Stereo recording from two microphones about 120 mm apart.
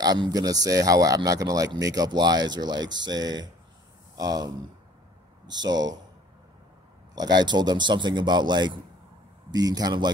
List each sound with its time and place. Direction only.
0.0 s speech: 35° right (ahead or behind)
7.2 s speech: 35° right (ahead or behind)